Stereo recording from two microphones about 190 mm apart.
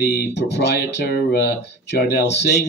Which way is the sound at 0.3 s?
65° left (ahead or behind).